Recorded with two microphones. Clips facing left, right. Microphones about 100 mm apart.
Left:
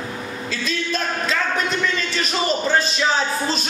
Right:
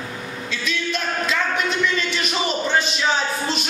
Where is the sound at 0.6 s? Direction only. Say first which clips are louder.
Left 1 dB; 35° left (ahead or behind).